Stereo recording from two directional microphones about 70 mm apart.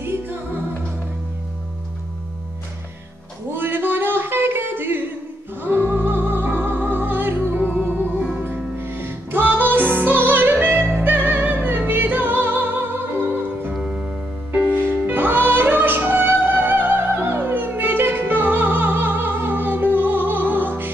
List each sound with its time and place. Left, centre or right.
0.0 s music: right
3.5 s a sound: right
5.6 s music: right
13.7 s music: centre
14.7 s music: right